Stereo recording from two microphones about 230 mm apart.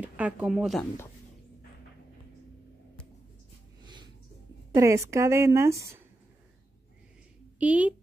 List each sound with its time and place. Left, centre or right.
0.0 s speech: centre
3.8 s snort: centre
4.7 s a woman's voice: centre
7.5 s a woman's voice: centre